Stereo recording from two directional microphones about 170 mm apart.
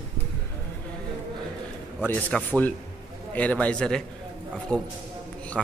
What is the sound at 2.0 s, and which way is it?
A man's voice, 10° left (ahead or behind).